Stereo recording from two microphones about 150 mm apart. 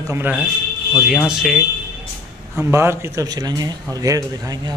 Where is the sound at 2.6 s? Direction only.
15° right (ahead or behind).